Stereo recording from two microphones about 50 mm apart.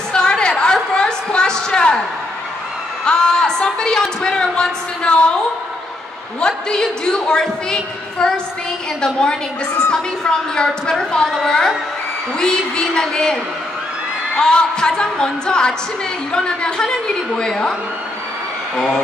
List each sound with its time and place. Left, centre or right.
0.1 s a sound: centre
3.1 s a woman's voice: centre
6.4 s a woman's voice: centre
14.4 s a woman's voice: centre